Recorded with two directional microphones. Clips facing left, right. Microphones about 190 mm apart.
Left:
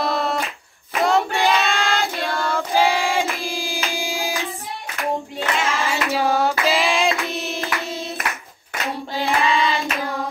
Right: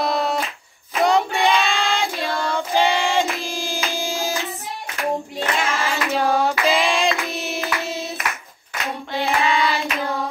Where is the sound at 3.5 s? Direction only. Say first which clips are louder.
Even; 15° left (ahead or behind).